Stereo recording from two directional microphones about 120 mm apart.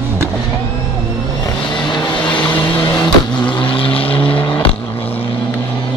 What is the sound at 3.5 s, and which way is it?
Vehicle, 45° left (ahead or behind).